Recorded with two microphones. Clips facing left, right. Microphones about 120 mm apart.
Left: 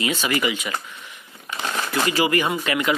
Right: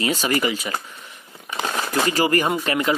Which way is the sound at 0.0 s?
40° right (ahead or behind).